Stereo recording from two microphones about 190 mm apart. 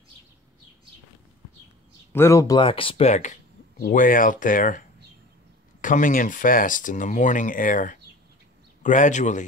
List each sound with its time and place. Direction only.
2.1 s a man's voice: 15° left (ahead or behind); by 9.4 s 40° left (ahead or behind)